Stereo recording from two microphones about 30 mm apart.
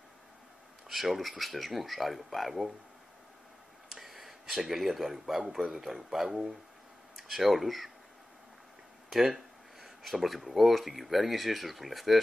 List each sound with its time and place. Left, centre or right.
0.8 s speech: centre
3.9 s a sound: centre
5.5 s speech: centre
6.2 s speech: centre
7.2 s speech: centre
9.1 s speech: centre